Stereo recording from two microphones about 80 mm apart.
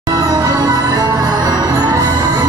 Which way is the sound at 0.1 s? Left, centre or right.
Right.